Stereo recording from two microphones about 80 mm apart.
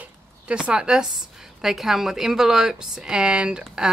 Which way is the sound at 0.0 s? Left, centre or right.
Centre.